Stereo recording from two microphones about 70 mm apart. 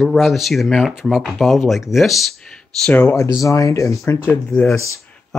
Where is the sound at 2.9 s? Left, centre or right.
Left.